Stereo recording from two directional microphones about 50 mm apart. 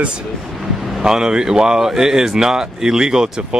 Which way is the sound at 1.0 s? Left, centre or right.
Centre.